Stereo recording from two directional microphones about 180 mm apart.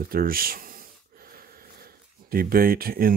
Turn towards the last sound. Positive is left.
turn(degrees=-55)  # may be behind; listen again after turning